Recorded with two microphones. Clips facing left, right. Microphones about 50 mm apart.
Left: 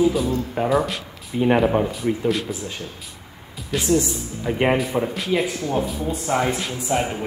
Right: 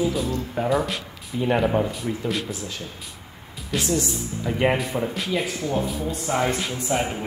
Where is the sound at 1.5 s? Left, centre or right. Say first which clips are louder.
Left 3 dB; centre.